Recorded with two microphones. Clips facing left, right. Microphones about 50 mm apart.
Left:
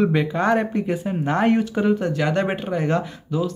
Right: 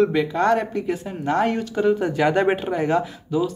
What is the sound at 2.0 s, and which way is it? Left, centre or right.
Speech, centre.